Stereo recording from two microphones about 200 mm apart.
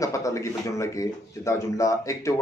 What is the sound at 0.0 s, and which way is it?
Speech, 15° left (ahead or behind).